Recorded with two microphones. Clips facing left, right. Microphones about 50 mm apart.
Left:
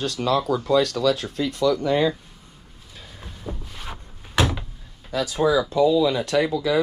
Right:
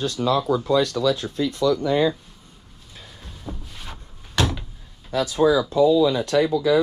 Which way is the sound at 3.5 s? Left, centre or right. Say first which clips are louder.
Left 2 dB; centre.